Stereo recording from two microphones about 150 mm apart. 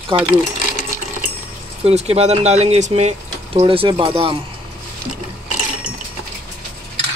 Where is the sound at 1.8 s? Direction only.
45° right (ahead or behind).